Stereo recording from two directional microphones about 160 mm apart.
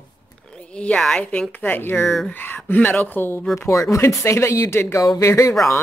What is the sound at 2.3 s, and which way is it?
Speech, 10° left (ahead or behind).